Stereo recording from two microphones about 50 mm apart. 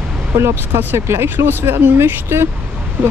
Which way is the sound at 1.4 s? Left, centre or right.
Right.